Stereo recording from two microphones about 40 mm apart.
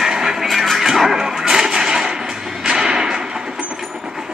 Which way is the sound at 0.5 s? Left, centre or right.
Centre.